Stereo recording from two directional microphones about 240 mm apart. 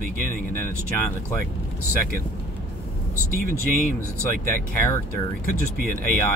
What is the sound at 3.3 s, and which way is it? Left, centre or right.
Speech, right.